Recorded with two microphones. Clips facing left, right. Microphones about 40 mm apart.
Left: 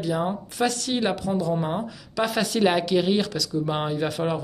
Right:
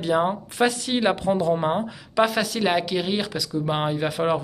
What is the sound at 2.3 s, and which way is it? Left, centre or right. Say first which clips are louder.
Speech: left 1 dB; centre.